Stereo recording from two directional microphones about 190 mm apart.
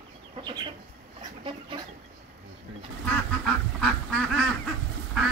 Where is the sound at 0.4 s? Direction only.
20° right (ahead or behind).